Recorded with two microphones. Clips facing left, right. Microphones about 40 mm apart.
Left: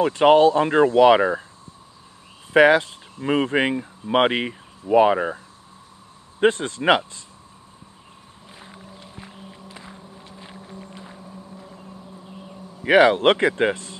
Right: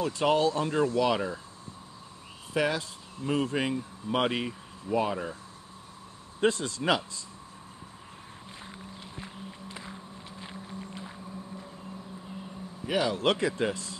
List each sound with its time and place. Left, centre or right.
0.0 s speech: left
2.5 s speech: left
6.4 s speech: left
8.6 s a sound: centre
9.5 s vehicle: centre
12.8 s speech: left